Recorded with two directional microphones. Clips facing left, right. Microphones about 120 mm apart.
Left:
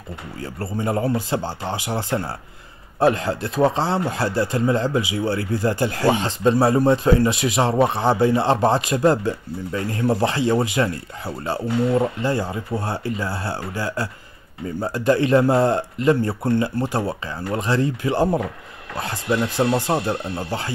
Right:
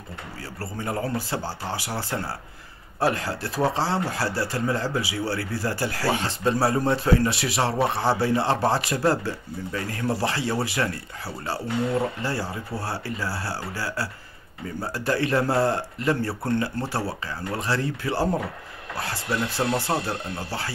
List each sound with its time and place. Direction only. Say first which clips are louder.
0.4 s speech: left 7 dB; 20° left (ahead or behind)